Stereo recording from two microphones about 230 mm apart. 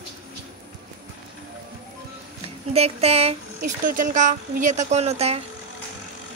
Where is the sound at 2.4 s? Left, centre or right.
Right.